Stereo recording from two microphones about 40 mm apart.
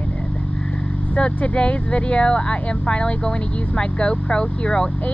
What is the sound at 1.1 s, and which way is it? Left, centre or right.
Speech, left.